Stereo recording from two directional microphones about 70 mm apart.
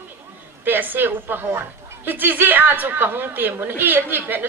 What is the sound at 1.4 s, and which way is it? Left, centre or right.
Speech, right.